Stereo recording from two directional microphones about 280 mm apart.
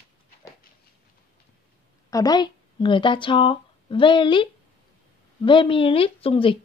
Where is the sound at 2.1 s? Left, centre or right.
Centre.